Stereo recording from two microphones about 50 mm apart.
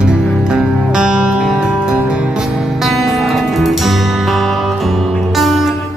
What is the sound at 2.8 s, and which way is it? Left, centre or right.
Music, centre.